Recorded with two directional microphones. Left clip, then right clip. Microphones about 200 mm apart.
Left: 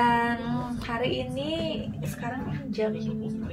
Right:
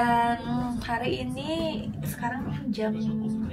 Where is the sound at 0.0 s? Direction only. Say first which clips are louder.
Even; 10° left (ahead or behind).